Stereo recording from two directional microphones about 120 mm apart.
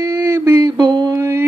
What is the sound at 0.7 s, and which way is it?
Mantra, 35° right (ahead or behind).